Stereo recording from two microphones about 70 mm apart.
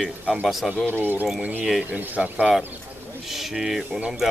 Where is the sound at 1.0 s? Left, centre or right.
Right.